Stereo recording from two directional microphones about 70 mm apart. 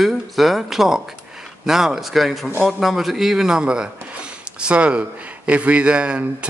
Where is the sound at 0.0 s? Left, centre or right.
Centre.